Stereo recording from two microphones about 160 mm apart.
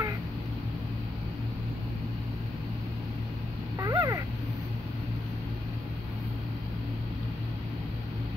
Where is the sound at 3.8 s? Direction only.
20° right (ahead or behind).